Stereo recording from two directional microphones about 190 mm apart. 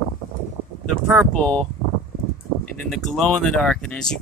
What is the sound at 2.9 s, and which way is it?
Speech, centre (ahead or behind).